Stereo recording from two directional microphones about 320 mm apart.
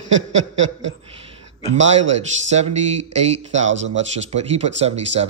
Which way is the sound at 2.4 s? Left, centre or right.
Right.